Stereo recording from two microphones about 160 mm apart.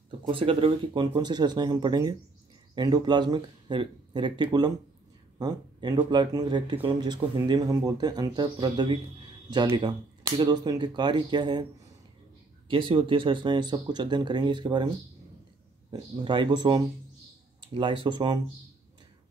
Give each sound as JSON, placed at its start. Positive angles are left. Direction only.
{"t": 0.3, "sound": "speech", "side_deg": -35}
{"t": 12.6, "sound": "speech", "side_deg": -30}
{"t": 15.9, "sound": "speech", "side_deg": -30}